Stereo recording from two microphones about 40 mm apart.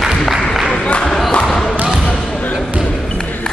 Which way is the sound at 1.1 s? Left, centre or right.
Centre.